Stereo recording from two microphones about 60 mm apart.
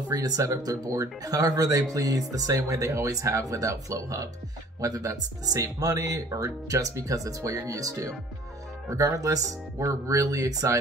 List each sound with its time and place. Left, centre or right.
0.1 s speech: right
5.6 s speech: right